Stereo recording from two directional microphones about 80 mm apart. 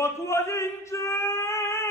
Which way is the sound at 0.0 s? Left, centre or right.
Left.